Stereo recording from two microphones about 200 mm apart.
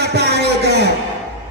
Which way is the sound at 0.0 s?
55° right (ahead or behind).